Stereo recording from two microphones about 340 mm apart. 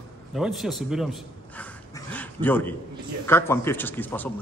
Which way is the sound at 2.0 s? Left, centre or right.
Centre.